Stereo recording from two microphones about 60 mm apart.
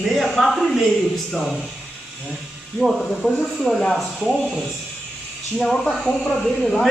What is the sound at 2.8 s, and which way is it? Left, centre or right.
A man's voice, centre.